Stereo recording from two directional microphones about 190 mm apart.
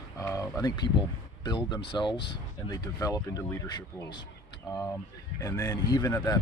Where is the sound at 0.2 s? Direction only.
15° left (ahead or behind).